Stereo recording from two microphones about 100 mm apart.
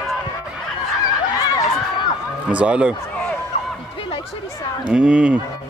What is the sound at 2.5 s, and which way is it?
Speech, 10° right (ahead or behind).